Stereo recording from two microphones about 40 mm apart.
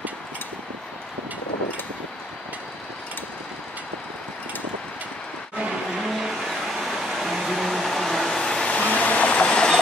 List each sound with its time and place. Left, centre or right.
6.0 s vehicle: centre
7.2 s a sound: centre
8.4 s vehicle: centre
8.7 s train: left